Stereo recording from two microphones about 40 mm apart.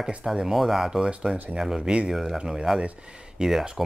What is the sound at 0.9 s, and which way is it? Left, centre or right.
Speech, centre.